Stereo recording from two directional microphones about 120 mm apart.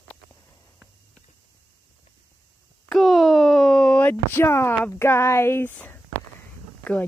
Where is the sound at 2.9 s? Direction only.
Centre (ahead or behind); by 5.7 s 20° left (ahead or behind).